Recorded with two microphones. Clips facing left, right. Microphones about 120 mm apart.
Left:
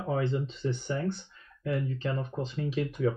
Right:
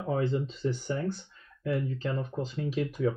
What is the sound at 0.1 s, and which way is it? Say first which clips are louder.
Speech: right 1 dB; 40° right (ahead or behind).